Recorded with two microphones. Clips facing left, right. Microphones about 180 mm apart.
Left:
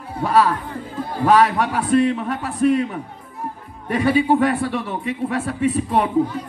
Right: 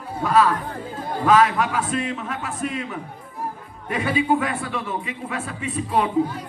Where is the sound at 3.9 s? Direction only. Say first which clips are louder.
Left 4 dB; 40° left (ahead or behind).